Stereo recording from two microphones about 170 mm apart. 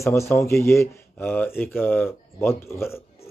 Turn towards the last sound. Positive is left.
turn(degrees=15)  # may be behind; listen again after turning